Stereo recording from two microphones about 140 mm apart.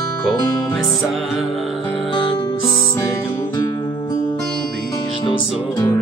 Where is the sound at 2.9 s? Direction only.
20° left (ahead or behind).